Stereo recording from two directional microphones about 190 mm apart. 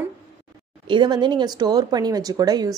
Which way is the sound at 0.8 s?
25° right (ahead or behind).